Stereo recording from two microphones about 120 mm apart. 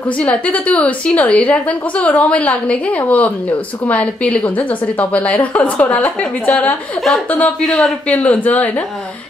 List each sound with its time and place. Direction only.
0.2 s a woman's voice: 10° left (ahead or behind)